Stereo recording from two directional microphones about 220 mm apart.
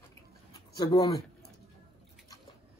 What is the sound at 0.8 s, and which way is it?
Speech, 15° left (ahead or behind).